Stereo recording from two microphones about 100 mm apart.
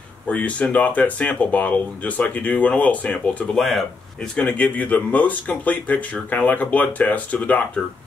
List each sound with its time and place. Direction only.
0.3 s speech: 15° left (ahead or behind)
3.5 s speech: centre (ahead or behind)
4.4 s speech: 15° left (ahead or behind)